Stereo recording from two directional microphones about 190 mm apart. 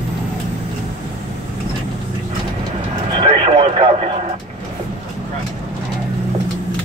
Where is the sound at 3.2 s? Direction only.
30° right (ahead or behind).